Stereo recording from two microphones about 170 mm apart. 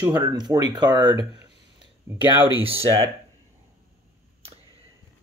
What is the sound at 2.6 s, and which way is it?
Speech, 35° right (ahead or behind).